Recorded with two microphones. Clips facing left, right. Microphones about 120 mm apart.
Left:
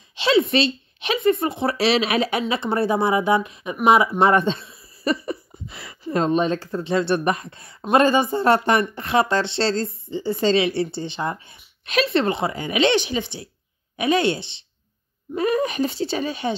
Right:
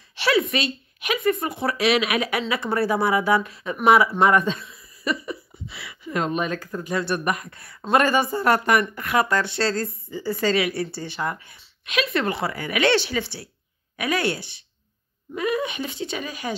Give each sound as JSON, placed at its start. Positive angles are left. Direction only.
{"t": 0.1, "sound": "speech", "side_deg": 20}
{"t": 15.3, "sound": "speech", "side_deg": 40}